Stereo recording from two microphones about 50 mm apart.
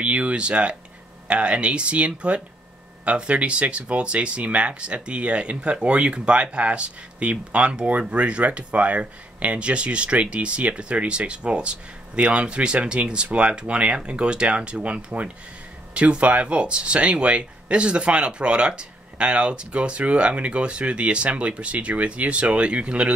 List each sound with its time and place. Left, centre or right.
0.0 s speech: right